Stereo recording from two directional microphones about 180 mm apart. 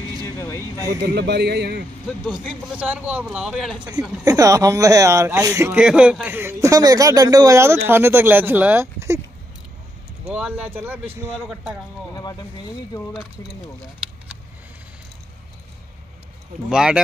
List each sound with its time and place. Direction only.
0.4 s a sound: 15° left (ahead or behind)
1.1 s speech: 65° right (ahead or behind)
2.6 s speech: 5° right (ahead or behind)
4.2 s speech: 20° right (ahead or behind)
10.2 s speech: 5° right (ahead or behind)
11.3 s speech: centre (ahead or behind)
12.2 s speech: 25° left (ahead or behind)
16.6 s speech: 5° right (ahead or behind)